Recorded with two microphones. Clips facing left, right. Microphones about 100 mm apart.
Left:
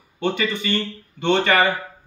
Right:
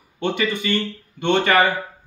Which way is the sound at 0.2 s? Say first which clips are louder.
Right 1 dB; 15° right (ahead or behind).